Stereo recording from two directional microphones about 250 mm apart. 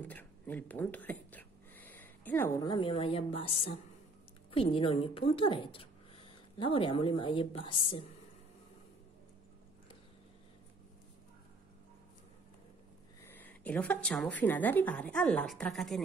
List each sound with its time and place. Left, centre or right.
0.0 s speech: centre
13.2 s a woman's voice: centre